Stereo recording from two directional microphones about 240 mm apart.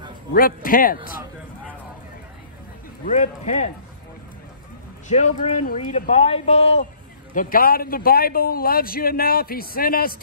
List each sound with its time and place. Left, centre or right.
0.3 s a man's voice: left
3.2 s a man's voice: left
5.0 s a man's voice: left
7.3 s a man's voice: left